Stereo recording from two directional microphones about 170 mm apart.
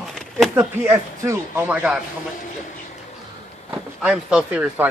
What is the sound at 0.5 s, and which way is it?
A man's voice, 10° right (ahead or behind).